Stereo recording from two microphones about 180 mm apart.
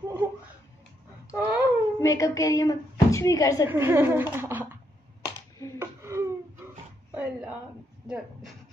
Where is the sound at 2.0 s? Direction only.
15° left (ahead or behind).